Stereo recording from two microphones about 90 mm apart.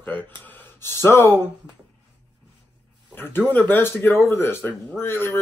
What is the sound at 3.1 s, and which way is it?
Speech, 25° left (ahead or behind).